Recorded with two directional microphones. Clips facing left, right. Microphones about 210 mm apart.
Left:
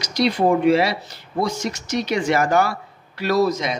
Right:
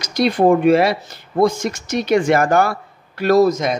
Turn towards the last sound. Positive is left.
turn(degrees=-45)  # may be behind; listen again after turning